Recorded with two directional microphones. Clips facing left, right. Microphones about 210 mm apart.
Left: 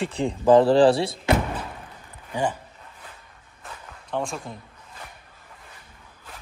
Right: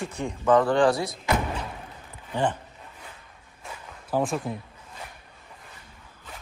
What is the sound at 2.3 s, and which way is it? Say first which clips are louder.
Speech: even; 10° left (ahead or behind).